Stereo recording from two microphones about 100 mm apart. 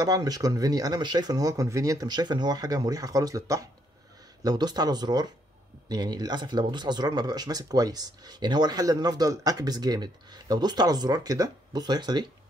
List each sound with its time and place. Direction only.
0.0 s speech: 40° right (ahead or behind)